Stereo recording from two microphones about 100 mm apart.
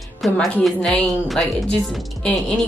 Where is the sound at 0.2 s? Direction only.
Centre (ahead or behind).